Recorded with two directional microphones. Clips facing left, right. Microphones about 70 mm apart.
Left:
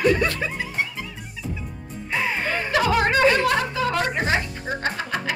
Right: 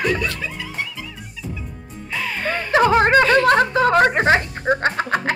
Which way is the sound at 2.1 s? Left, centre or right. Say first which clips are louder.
Even; left.